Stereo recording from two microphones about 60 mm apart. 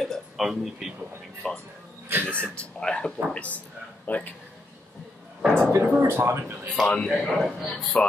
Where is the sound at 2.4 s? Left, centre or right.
Centre.